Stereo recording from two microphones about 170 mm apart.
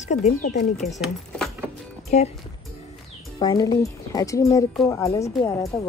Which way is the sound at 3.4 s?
25° left (ahead or behind).